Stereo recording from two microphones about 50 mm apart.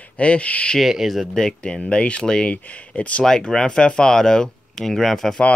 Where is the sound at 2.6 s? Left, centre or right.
Left.